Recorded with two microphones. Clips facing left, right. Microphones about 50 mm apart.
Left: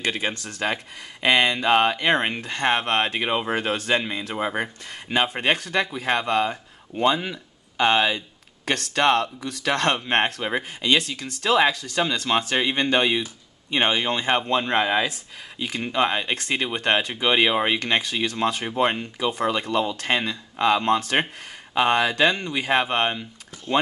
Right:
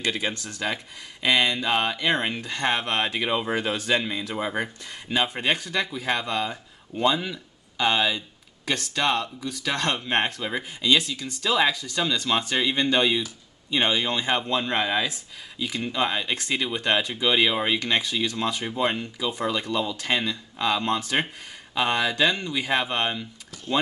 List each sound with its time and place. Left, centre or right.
0.0 s speech: left
5.1 s speech: left
8.6 s speech: left
11.1 s speech: left
12.3 s speech: left
15.6 s speech: left
18.0 s speech: left
18.6 s speech: left